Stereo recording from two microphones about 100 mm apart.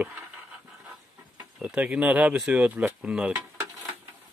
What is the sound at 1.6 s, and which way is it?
Speech, 10° right (ahead or behind).